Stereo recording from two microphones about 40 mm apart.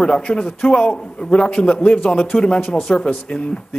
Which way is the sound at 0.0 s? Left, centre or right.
Centre.